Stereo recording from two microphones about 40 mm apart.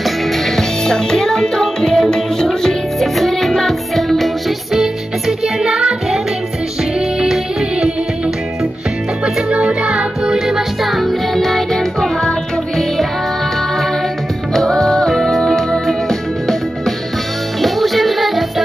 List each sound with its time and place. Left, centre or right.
0.6 s music: centre
4.7 s music: centre
9.2 s music: right
10.5 s music: centre
11.3 s music: centre
14.5 s music: centre